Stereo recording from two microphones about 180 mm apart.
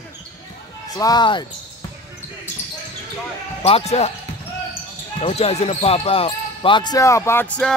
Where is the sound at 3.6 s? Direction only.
35° left (ahead or behind).